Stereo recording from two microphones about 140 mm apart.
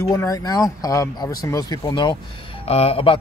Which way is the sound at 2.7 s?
45° left (ahead or behind).